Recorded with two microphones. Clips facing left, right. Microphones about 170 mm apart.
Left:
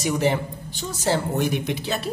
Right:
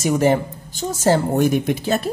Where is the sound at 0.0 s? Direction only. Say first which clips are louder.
Right 5 dB; 45° right (ahead or behind).